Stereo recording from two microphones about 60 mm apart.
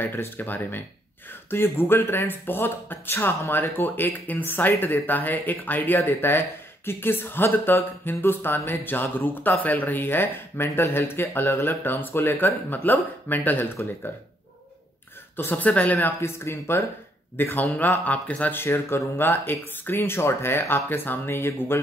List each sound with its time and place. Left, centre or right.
0.0 s speech: left
15.3 s speech: left
16.2 s speech: left
18.5 s speech: left